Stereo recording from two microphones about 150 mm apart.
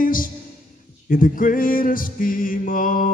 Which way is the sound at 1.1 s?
65° left (ahead or behind).